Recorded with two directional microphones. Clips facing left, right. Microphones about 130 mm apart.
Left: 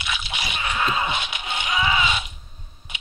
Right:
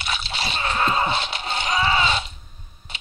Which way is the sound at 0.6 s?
35° right (ahead or behind).